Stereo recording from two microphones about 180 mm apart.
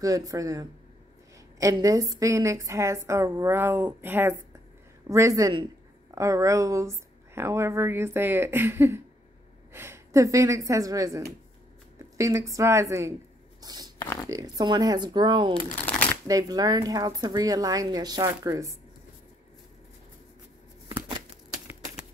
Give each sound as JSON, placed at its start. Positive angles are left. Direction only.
{"t": 0.0, "sound": "a woman's voice", "side_deg": -20}
{"t": 13.6, "sound": "a sound", "side_deg": -20}
{"t": 14.3, "sound": "a woman's voice", "side_deg": -20}
{"t": 15.7, "sound": "shuffling cards", "side_deg": 5}
{"t": 16.3, "sound": "a woman's voice", "side_deg": -20}